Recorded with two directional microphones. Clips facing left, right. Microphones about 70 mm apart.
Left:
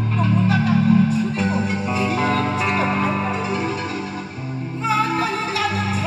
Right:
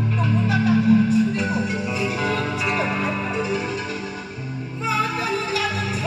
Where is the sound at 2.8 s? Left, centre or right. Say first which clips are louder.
Left 3 dB; left.